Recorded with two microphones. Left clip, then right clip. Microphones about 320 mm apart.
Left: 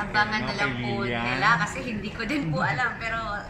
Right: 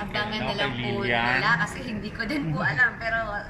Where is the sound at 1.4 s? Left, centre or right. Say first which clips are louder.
Left 2 dB; centre.